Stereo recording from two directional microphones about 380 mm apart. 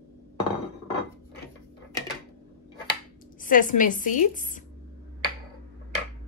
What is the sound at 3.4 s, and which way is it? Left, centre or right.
Speech, left.